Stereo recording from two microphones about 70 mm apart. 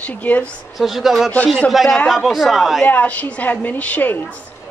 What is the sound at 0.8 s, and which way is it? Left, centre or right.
Speech, centre.